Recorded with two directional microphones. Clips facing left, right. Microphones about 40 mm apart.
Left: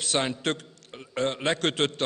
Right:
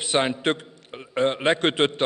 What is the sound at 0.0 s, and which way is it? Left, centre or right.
A man's voice, right.